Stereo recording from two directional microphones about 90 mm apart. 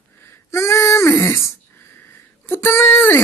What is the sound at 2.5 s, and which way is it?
Child singing, 25° left (ahead or behind).